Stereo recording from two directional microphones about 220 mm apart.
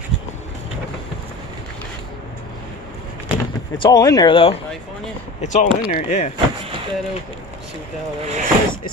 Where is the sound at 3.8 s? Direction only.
15° left (ahead or behind).